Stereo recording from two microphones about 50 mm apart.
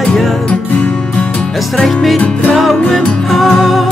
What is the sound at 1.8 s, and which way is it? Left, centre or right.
Music, centre.